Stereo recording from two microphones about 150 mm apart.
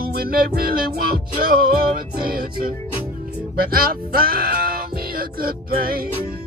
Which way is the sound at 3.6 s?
80° right.